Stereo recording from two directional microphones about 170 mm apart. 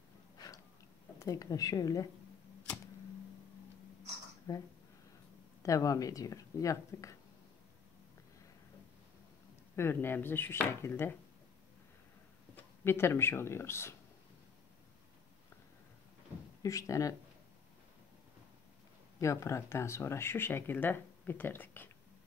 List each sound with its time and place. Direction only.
1.2 s speech: 20° left (ahead or behind)
4.5 s speech: 20° left (ahead or behind)
9.8 s speech: 15° left (ahead or behind)
12.5 s speech: 15° left (ahead or behind)
16.6 s speech: 20° left (ahead or behind)
19.1 s speech: 20° left (ahead or behind)